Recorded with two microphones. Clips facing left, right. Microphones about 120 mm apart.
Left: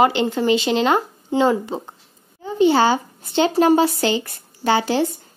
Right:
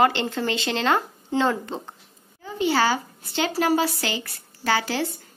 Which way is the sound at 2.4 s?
25° left (ahead or behind).